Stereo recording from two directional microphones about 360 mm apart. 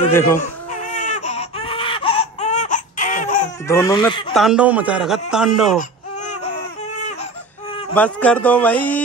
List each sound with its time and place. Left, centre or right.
0.1 s speech: centre
0.7 s baby cry: centre
3.6 s speech: centre
4.3 s a man's voice: centre
5.8 s baby cry: centre
7.7 s a man's voice: centre